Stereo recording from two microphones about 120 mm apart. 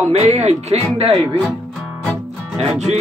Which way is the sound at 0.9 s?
55° right (ahead or behind).